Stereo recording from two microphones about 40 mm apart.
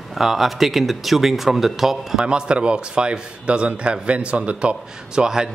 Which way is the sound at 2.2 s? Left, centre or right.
Right.